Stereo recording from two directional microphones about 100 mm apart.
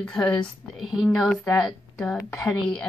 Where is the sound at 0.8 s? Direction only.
5° right (ahead or behind).